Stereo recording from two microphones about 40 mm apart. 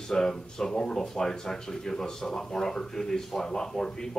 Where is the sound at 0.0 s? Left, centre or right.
Centre.